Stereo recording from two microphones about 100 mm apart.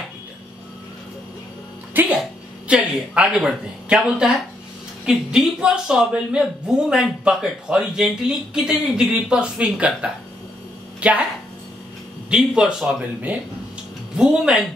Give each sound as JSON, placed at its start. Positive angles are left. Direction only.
{"t": 2.0, "sound": "a sound", "side_deg": -20}
{"t": 2.7, "sound": "a woman's voice", "side_deg": -10}
{"t": 12.3, "sound": "a woman's voice", "side_deg": -10}